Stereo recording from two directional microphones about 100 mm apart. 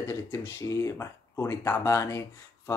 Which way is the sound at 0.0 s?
25° left (ahead or behind).